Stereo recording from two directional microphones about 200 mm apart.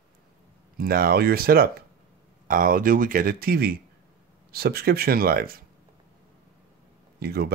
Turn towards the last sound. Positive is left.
turn(degrees=-50)  # may be behind; listen again after turning